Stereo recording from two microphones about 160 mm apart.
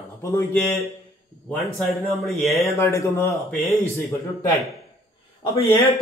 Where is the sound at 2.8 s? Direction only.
15° left (ahead or behind).